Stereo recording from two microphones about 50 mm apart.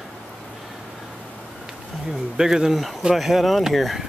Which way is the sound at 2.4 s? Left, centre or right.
Centre.